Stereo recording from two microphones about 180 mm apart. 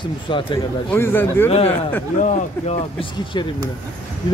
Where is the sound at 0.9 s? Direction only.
10° left (ahead or behind).